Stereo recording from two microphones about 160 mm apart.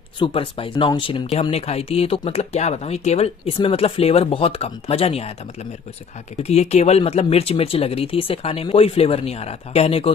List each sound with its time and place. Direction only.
0.2 s speech: 35° left (ahead or behind)
6.3 s speech: 40° left (ahead or behind)